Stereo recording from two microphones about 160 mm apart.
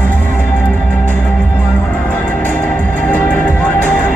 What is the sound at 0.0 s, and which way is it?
Music, 10° left (ahead or behind).